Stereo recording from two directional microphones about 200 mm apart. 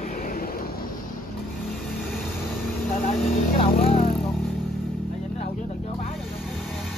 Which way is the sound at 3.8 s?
30° left (ahead or behind).